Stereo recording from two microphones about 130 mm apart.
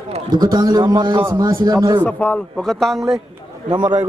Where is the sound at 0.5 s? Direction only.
35° right (ahead or behind).